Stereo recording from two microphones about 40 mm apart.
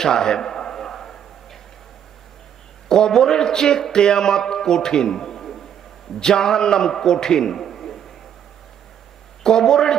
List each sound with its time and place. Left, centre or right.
0.0 s a sound: centre
2.9 s speech: centre
9.4 s speech: centre